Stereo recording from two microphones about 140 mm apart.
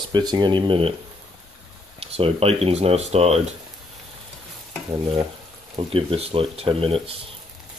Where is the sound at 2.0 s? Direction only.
45° right (ahead or behind).